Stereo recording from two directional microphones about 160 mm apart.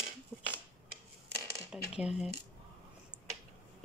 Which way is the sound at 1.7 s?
5° right (ahead or behind).